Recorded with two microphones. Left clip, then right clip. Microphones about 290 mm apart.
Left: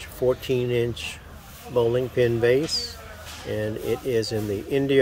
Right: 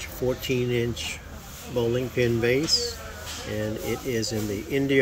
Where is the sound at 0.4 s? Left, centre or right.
Centre.